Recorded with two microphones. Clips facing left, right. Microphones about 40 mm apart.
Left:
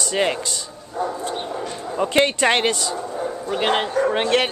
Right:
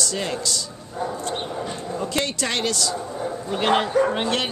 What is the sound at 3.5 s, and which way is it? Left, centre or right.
Speech, centre.